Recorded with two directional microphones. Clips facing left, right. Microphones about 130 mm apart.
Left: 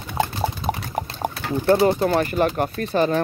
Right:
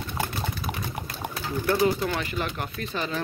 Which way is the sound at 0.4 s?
35° left (ahead or behind).